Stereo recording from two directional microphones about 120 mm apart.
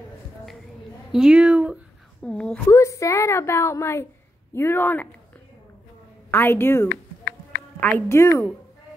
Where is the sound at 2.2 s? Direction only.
10° left (ahead or behind).